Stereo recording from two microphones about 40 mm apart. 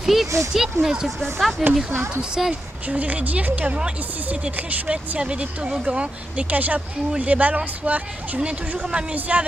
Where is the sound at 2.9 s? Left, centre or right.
Right.